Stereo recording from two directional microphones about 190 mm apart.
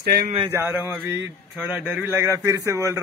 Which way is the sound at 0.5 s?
10° right (ahead or behind).